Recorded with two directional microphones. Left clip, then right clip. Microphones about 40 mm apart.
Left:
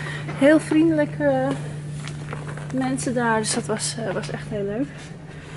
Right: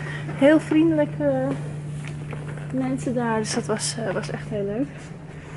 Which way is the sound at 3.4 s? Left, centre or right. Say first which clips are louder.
Even; centre.